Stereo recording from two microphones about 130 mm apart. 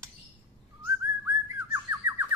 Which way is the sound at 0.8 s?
20° right (ahead or behind).